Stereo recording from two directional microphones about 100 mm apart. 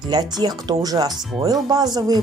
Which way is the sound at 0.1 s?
45° right (ahead or behind).